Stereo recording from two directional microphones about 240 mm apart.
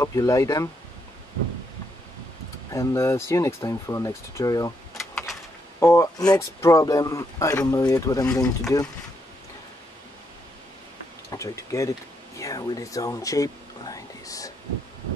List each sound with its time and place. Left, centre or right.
0.0 s speech: centre
2.7 s speech: centre
5.1 s a sound: centre
5.8 s speech: centre
11.2 s speech: centre